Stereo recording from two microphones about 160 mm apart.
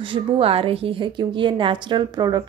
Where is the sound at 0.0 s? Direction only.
35° right (ahead or behind).